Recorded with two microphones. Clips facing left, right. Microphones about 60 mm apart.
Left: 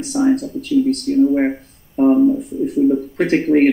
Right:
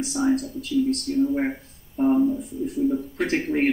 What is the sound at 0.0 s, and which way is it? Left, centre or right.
Speech, left.